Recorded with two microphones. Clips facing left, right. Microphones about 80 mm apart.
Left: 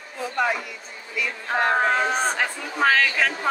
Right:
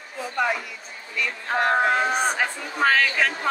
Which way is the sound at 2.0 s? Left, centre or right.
Centre.